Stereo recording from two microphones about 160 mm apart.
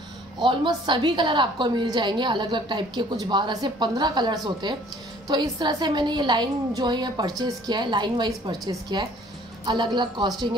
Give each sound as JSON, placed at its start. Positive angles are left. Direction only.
{"t": 0.4, "sound": "a woman's voice", "side_deg": -30}